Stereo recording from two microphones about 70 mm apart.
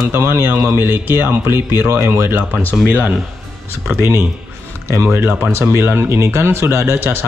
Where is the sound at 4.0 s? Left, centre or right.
Right.